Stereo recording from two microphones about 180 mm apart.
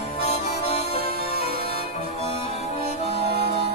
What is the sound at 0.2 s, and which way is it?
Music, 35° left (ahead or behind).